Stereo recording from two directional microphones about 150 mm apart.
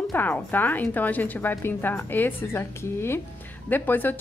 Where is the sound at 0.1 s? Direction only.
10° left (ahead or behind).